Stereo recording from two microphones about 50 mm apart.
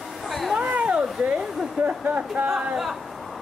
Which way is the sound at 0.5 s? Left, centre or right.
Right.